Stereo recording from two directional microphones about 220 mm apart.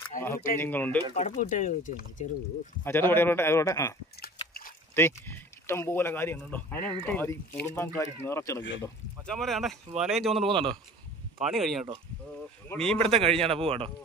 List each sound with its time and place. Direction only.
0.1 s speech: 35° left (ahead or behind)
0.6 s speech: 10° left (ahead or behind)
1.1 s speech: 30° left (ahead or behind)
2.8 s speech: 10° left (ahead or behind)
4.9 s speech: 10° left (ahead or behind)
10.4 s a man's voice: 25° right (ahead or behind)
11.3 s speech: centre (ahead or behind)
13.0 s a man's voice: 25° right (ahead or behind)